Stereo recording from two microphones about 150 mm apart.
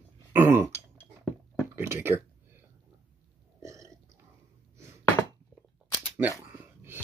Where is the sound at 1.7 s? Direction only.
15° right (ahead or behind).